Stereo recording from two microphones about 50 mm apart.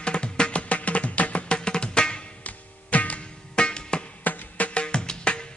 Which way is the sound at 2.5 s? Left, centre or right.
Left.